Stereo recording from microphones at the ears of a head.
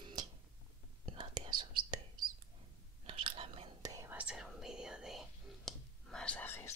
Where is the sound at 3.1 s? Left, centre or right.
Right.